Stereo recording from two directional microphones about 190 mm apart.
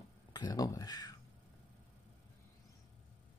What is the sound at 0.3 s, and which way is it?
Speech, 20° left (ahead or behind).